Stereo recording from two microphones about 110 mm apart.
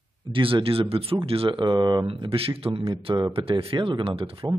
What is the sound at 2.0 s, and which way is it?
Speech, 60° right (ahead or behind).